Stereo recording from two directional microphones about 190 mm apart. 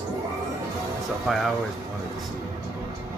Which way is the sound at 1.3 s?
Centre (ahead or behind).